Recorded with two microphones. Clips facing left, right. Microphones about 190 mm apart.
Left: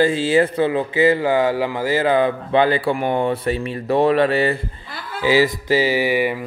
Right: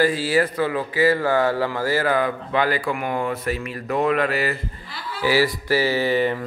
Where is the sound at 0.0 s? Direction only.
25° left (ahead or behind).